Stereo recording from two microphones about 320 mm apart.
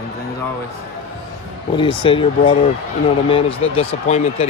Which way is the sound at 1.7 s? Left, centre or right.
Centre.